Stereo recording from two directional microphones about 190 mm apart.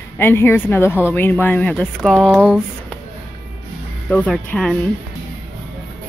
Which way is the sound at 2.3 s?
10° right (ahead or behind).